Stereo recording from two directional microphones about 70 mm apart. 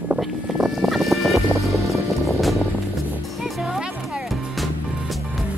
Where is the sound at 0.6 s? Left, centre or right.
Centre.